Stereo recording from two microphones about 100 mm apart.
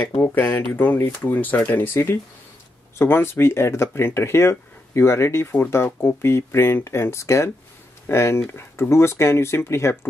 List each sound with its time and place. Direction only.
0.2 s speech: 20° left (ahead or behind)